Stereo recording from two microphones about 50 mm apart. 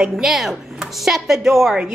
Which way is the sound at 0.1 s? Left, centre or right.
Centre.